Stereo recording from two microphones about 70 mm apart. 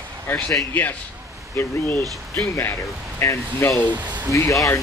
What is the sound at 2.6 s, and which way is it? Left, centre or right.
Speech, left.